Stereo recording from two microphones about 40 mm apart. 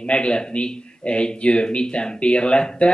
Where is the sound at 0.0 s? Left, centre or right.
Left.